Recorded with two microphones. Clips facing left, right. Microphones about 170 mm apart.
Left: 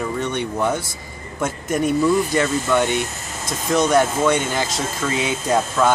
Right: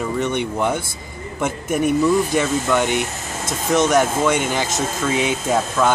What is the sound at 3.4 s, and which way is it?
Speech, 25° right (ahead or behind).